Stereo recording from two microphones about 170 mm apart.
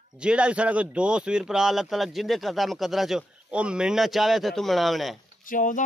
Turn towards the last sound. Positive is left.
turn(degrees=50)  # may be behind; listen again after turning